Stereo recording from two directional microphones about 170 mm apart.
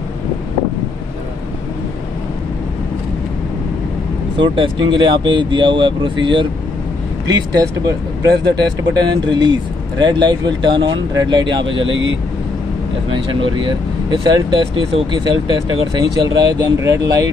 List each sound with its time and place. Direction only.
4.9 s speech: 30° right (ahead or behind)
11.8 s speech: 90° right
13.1 s speech: 30° right (ahead or behind)